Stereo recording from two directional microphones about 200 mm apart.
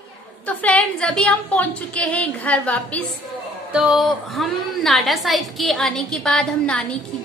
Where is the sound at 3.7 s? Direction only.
5° right (ahead or behind).